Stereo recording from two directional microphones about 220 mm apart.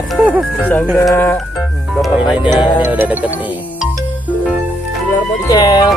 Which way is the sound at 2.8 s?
10° right (ahead or behind).